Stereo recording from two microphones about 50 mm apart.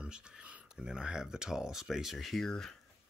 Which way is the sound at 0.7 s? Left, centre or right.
Centre.